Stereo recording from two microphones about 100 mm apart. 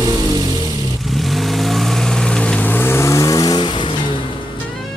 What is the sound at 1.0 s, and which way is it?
Vehicle, centre (ahead or behind).